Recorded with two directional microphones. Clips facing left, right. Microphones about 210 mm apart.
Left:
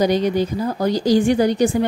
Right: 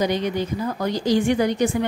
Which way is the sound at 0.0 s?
35° left (ahead or behind).